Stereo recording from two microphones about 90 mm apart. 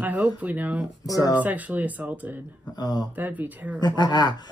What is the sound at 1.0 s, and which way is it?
Speech, 40° left (ahead or behind).